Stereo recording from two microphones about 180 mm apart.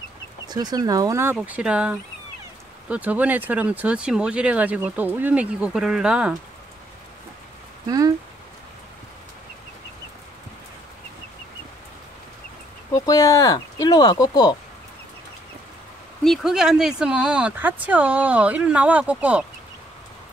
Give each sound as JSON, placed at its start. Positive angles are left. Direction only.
{"t": 0.5, "sound": "speech", "side_deg": -20}
{"t": 1.3, "sound": "speech", "side_deg": -5}
{"t": 12.9, "sound": "speech", "side_deg": 20}
{"t": 16.3, "sound": "speech", "side_deg": -5}